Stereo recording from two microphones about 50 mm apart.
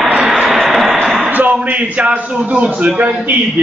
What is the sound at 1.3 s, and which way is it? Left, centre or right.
A man's voice, right.